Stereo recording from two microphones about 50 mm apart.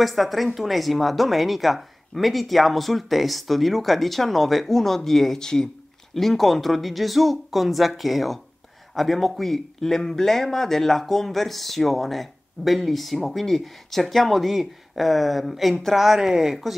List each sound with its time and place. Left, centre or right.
0.0 s speech: centre